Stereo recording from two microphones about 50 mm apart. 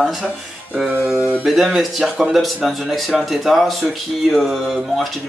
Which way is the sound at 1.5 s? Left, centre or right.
Centre.